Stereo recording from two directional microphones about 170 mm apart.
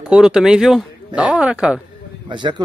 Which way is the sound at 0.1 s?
5° right (ahead or behind).